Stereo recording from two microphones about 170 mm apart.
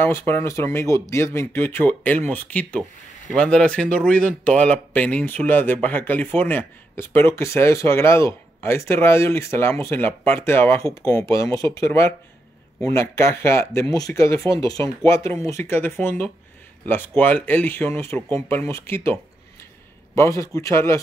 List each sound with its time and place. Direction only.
0.0 s speech: 15° left (ahead or behind)
20.2 s speech: 20° left (ahead or behind)